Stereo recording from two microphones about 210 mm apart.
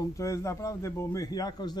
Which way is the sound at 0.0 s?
15° left (ahead or behind).